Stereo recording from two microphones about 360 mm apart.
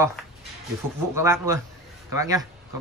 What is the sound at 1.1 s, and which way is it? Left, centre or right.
Speech, centre.